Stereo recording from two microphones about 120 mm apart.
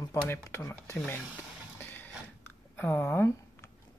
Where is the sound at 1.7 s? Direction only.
20° left (ahead or behind).